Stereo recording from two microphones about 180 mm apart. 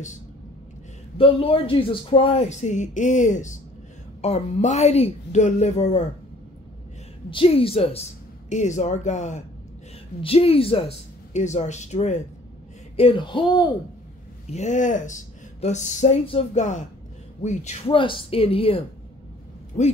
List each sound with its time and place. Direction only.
1.1 s speech: 30° left (ahead or behind)
7.2 s speech: 30° left (ahead or behind)
12.9 s a sound: 30° left (ahead or behind)
14.5 s speech: 40° left (ahead or behind)